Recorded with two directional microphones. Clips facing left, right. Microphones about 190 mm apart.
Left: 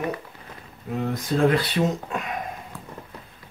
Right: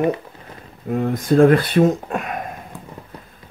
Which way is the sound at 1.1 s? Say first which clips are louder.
Right 8 dB; 50° right (ahead or behind).